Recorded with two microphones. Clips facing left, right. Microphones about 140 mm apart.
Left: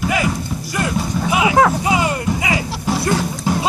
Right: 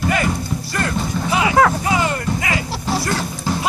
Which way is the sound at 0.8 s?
15° left (ahead or behind).